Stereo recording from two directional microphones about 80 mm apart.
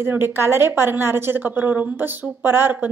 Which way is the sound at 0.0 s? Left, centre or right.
Right.